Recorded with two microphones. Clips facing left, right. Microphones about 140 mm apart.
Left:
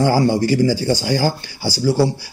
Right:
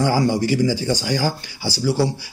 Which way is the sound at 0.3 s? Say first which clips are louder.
Left 3 dB; 35° left (ahead or behind).